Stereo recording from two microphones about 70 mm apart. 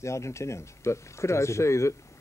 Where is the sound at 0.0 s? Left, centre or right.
Left.